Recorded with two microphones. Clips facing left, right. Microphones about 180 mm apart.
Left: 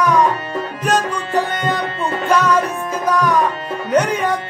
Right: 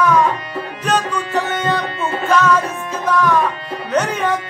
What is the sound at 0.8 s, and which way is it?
Music, 10° left (ahead or behind).